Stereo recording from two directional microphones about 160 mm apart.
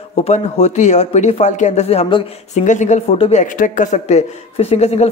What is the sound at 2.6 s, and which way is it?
Speech, 50° left (ahead or behind).